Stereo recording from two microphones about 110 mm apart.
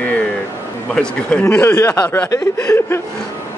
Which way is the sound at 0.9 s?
10° left (ahead or behind).